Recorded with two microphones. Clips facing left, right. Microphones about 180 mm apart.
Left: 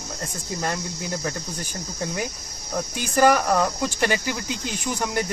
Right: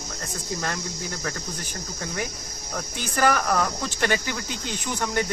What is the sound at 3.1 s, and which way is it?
Cricket, 15° left (ahead or behind).